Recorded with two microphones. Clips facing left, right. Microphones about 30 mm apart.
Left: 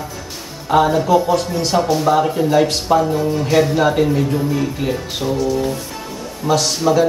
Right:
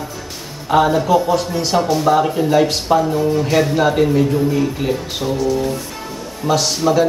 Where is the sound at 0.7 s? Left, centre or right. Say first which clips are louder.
Even; centre.